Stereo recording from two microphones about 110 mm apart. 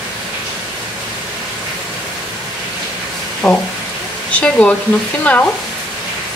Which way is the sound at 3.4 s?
5° left (ahead or behind).